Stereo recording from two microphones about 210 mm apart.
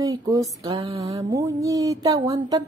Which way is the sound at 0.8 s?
30° right (ahead or behind).